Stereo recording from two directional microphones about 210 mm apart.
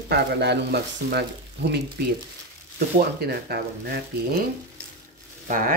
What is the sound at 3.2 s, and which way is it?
Speech, 50° right (ahead or behind).